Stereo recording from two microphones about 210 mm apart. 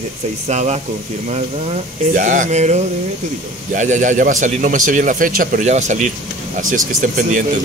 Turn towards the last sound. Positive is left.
turn(degrees=-40)  # may be behind; listen again after turning